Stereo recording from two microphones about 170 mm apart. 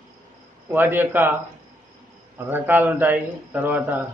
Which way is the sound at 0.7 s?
10° right (ahead or behind).